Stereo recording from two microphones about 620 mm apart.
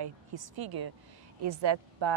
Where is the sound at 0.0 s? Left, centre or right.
Right.